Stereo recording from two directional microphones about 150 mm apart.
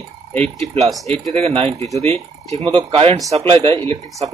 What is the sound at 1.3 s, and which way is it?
Speech, 45° right (ahead or behind).